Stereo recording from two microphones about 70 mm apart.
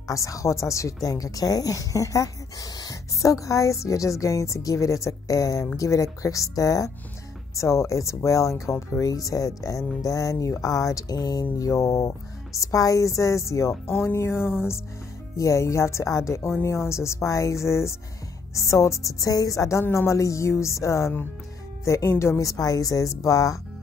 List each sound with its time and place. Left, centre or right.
0.1 s speech: left
1.0 s speech: left
11.5 s speech: left
15.3 s speech: left
22.4 s speech: left